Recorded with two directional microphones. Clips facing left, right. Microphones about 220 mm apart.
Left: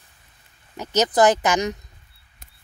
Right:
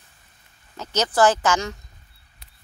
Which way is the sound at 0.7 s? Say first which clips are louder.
Left 3 dB; 15° left (ahead or behind).